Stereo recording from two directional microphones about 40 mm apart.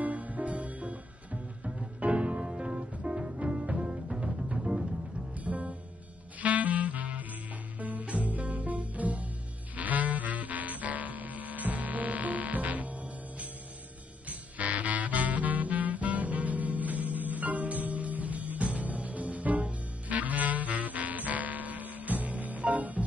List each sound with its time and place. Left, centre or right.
0.0 s music: right; by 4.9 s centre
5.4 s music: right
14.6 s music: right